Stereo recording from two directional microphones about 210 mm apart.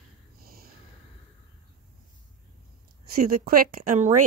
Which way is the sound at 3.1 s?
45° right (ahead or behind).